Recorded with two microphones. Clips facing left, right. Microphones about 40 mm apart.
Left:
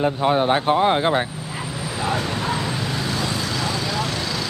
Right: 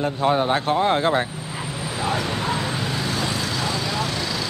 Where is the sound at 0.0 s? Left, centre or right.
Centre.